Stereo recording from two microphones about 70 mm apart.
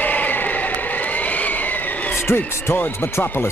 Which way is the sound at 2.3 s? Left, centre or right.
Left.